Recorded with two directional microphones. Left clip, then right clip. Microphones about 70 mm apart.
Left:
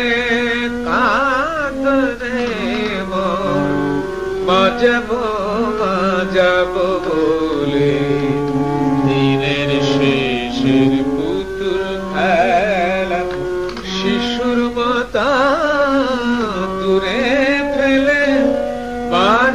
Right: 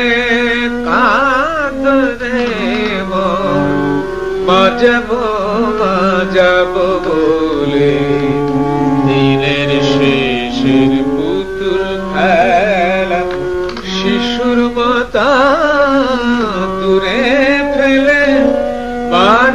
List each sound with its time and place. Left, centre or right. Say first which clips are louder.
0.0 s music: right 4 dB; right
4.5 s music: right 4 dB; right
12.2 s music: right 4 dB; right
14.0 s music: right 4 dB; right
19.1 s music: right 4 dB; right